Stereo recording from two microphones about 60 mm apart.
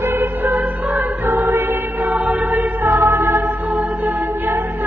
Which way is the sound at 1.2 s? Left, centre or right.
Right.